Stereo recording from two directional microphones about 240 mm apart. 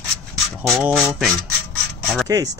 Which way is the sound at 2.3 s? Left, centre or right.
Centre.